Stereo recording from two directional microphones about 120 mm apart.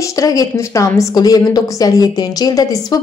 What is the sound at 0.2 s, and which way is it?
A woman's voice, 30° left (ahead or behind).